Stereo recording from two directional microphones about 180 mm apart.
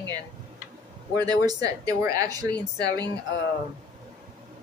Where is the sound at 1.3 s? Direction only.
20° right (ahead or behind).